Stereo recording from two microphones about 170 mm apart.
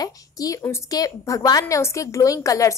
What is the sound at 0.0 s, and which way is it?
A woman's voice, 20° left (ahead or behind).